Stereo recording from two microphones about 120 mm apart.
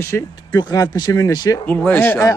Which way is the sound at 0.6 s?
35° left (ahead or behind).